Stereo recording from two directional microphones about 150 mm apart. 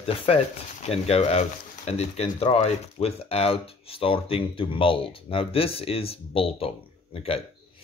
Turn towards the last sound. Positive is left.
turn(degrees=40)  # may be behind; listen again after turning